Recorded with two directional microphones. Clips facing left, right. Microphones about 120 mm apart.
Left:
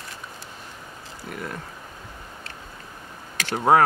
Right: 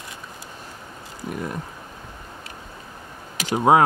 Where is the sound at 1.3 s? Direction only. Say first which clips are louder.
Right 4 dB; 20° right (ahead or behind).